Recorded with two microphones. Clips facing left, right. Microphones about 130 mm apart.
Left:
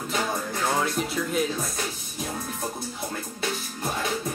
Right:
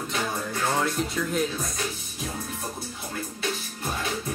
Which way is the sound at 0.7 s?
Centre (ahead or behind).